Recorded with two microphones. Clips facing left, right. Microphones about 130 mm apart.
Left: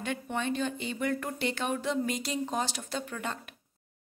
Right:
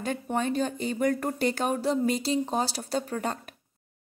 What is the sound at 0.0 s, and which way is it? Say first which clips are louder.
A woman's voice: right 4 dB; 40° right (ahead or behind).